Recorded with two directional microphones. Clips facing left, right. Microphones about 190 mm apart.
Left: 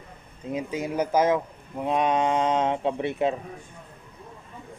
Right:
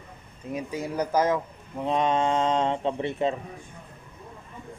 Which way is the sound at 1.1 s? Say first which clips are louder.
Left 2 dB; 10° left (ahead or behind).